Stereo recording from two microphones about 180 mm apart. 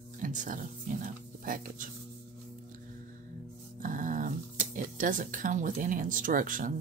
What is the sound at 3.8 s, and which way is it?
Speech, 50° right (ahead or behind).